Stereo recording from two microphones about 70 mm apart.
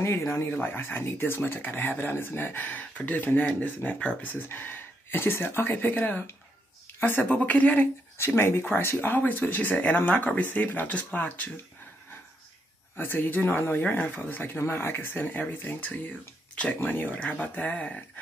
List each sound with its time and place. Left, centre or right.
0.0 s speech: left
0.5 s speech: left
8.2 s speech: left
12.9 s speech: left